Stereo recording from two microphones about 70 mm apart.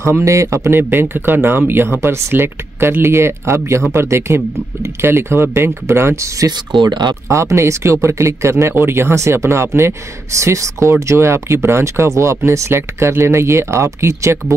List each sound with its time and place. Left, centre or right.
0.0 s speech: right
6.8 s speech: right
7.2 s speech: right